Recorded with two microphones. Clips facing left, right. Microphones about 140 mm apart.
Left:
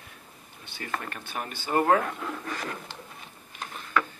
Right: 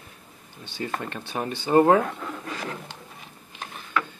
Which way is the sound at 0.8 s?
25° right (ahead or behind).